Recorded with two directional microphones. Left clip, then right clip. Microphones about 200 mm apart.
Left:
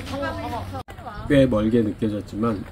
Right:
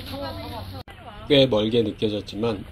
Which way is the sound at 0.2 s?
30° right (ahead or behind).